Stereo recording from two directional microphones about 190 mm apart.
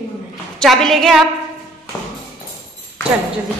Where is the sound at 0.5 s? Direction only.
Centre (ahead or behind).